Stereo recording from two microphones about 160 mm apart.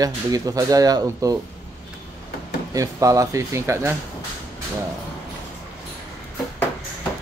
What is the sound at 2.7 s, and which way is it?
Speech, 20° right (ahead or behind).